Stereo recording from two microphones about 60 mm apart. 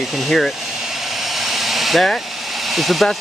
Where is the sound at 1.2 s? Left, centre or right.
Centre.